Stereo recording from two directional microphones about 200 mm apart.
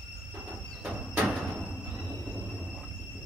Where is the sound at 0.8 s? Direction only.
5° right (ahead or behind).